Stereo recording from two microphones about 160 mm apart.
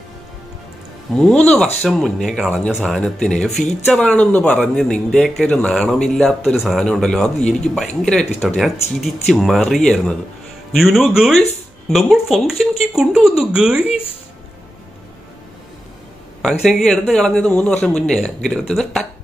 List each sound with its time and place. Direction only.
1.1 s speech: 5° left (ahead or behind)
16.6 s speech: 5° left (ahead or behind)